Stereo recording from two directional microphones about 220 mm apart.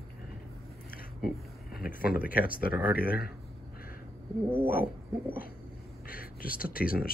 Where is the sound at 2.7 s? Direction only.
5° right (ahead or behind).